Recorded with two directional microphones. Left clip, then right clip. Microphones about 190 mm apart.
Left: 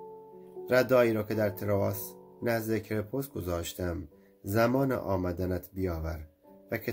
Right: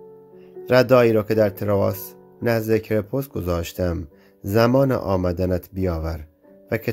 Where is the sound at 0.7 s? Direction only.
50° right (ahead or behind).